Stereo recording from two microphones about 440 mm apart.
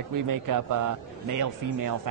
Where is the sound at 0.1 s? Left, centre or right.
Right.